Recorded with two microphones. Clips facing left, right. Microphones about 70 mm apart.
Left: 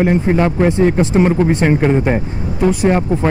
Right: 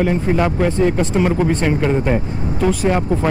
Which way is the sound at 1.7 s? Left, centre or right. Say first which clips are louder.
Left 3 dB; left.